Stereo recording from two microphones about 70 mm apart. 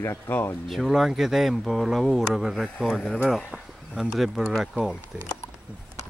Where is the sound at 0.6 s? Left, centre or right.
Centre.